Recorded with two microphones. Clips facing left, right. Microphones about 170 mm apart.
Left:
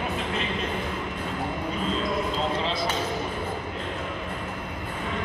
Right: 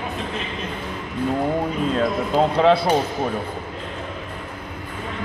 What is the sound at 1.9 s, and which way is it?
Basketball bounce, 60° right (ahead or behind).